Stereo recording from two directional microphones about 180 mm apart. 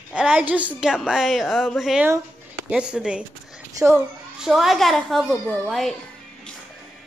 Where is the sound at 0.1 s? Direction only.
5° right (ahead or behind).